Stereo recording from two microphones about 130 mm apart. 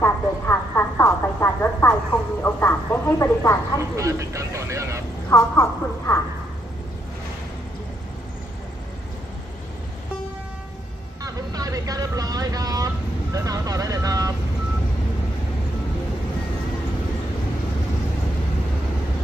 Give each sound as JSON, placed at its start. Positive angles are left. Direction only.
{"t": 0.0, "sound": "a sound", "side_deg": 20}
{"t": 3.9, "sound": "vehicle", "side_deg": -25}
{"t": 5.3, "sound": "a woman's voice", "side_deg": 20}
{"t": 11.2, "sound": "vehicle", "side_deg": -25}